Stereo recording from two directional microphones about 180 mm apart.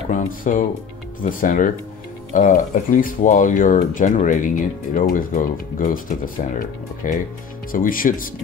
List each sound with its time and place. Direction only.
0.1 s speech: 45° left (ahead or behind)